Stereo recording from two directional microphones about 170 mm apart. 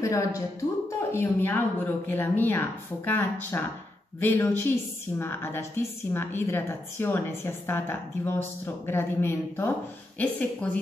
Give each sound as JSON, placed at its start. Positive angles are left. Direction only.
{"t": 0.0, "sound": "a woman's voice", "side_deg": 20}